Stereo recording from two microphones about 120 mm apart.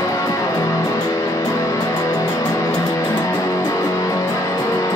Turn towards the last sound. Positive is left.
turn(degrees=25)  # may be behind; listen again after turning